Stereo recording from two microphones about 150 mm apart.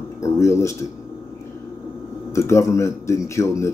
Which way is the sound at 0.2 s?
20° left (ahead or behind).